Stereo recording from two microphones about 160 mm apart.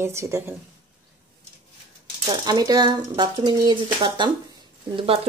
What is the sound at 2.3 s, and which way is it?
Speech, 25° right (ahead or behind).